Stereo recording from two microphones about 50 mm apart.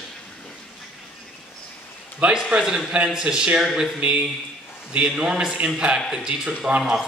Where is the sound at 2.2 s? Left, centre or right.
Right.